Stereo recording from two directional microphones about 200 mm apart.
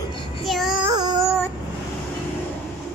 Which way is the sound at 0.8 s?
20° right (ahead or behind).